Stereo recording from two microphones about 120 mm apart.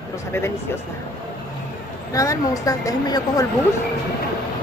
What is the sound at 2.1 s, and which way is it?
Speech, 30° left (ahead or behind).